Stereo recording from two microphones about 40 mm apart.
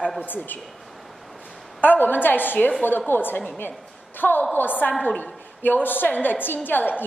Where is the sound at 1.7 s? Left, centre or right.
Left.